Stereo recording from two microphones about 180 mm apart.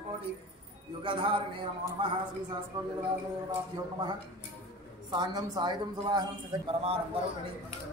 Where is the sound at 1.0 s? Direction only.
30° right (ahead or behind).